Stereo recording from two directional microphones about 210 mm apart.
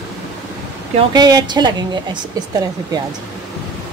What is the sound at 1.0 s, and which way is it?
Speech, 20° right (ahead or behind).